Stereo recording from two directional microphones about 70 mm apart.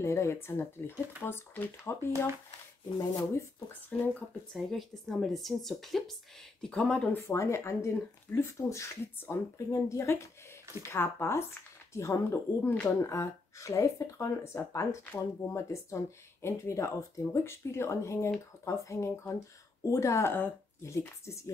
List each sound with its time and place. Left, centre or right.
0.0 s speech: left
3.0 s speech: left
3.9 s speech: left
4.6 s speech: centre
7.2 s speech: left
20.9 s speech: left